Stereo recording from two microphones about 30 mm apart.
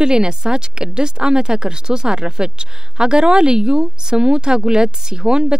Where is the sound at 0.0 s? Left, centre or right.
Right.